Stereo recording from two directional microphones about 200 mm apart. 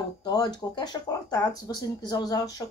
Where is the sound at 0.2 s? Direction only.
20° left (ahead or behind).